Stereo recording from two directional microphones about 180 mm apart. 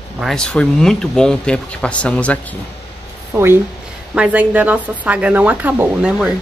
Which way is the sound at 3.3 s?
15° right (ahead or behind).